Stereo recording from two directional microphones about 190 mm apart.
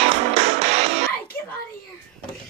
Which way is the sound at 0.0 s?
35° right (ahead or behind).